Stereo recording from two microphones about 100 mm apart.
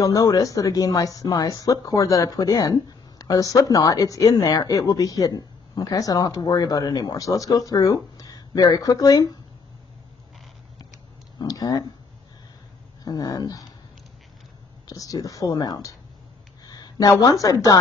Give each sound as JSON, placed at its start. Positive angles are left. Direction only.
{"t": 0.0, "sound": "speech", "side_deg": 35}
{"t": 11.3, "sound": "speech", "side_deg": 40}
{"t": 13.0, "sound": "speech", "side_deg": 40}
{"t": 14.9, "sound": "a woman's voice", "side_deg": 35}